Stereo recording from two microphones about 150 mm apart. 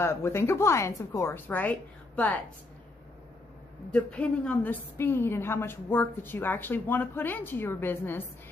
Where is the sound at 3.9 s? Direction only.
10° left (ahead or behind).